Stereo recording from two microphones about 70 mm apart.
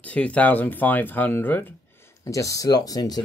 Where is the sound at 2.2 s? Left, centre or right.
Left.